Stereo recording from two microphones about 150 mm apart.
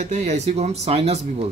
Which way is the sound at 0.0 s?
50° right (ahead or behind).